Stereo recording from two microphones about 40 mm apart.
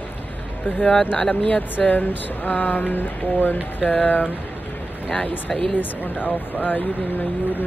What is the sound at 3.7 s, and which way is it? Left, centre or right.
Speech, left.